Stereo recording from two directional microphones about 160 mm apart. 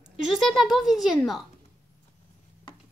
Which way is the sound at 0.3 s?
Centre (ahead or behind).